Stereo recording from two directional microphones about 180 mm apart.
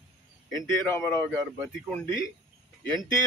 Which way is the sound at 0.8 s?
15° left (ahead or behind).